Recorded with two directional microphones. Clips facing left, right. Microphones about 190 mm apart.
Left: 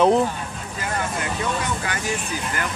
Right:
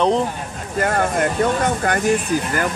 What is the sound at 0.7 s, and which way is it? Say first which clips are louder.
Speech: right 9 dB; 55° right (ahead or behind).